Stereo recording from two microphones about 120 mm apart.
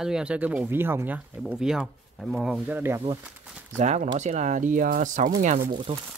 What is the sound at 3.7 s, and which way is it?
Speech, 70° right (ahead or behind).